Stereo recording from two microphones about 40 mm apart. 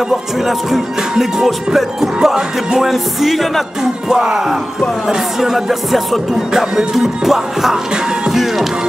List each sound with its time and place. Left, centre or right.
0.5 s music: centre
4.1 s music: centre